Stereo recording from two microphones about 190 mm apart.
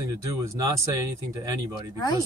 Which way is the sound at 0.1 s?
20° right (ahead or behind).